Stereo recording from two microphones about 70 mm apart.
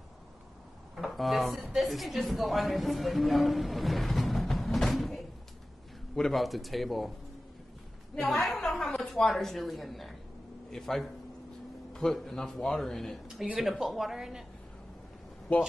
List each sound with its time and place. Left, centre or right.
0.9 s a man's voice: centre
8.3 s a woman's voice: centre
15.5 s speech: left